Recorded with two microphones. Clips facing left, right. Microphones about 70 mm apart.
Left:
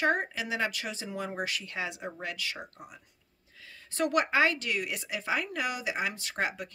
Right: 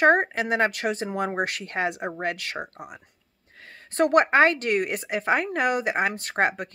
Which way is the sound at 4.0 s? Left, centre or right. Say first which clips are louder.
Right 8 dB; right.